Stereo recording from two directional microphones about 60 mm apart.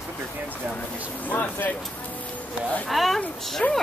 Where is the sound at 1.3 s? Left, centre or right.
Left.